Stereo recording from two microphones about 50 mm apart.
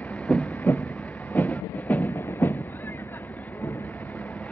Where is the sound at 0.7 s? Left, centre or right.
Left.